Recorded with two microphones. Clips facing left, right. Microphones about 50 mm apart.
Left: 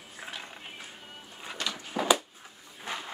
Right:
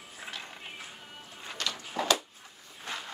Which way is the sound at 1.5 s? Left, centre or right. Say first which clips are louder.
Left 1 dB; centre.